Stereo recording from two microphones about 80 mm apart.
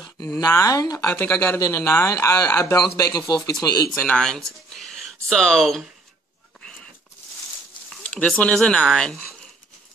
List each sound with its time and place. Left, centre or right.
0.5 s speech: left
1.0 s speech: left
4.1 s speech: centre
8.1 s speech: centre